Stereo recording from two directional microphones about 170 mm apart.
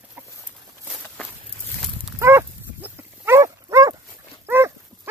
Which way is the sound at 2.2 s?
15° right (ahead or behind).